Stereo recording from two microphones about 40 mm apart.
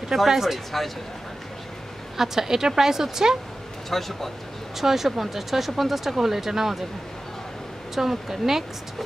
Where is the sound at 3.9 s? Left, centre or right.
Centre.